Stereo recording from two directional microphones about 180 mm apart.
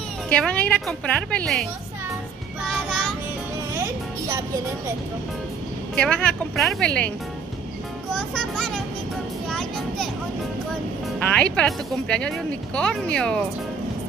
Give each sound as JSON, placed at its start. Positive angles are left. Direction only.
{"t": 0.3, "sound": "speech", "side_deg": 5}
{"t": 3.7, "sound": "music", "side_deg": -15}
{"t": 5.9, "sound": "speech", "side_deg": 5}
{"t": 8.1, "sound": "speech", "side_deg": 0}
{"t": 9.5, "sound": "a sound", "side_deg": 0}
{"t": 11.3, "sound": "speech", "side_deg": 5}